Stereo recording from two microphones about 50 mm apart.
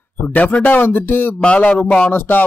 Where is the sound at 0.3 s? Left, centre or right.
Left.